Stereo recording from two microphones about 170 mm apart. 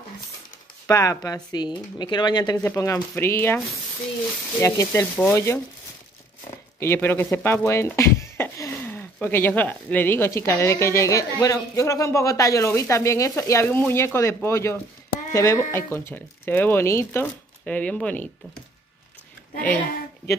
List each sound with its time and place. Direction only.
0.8 s speech: 20° left (ahead or behind)
6.8 s speech: 15° left (ahead or behind)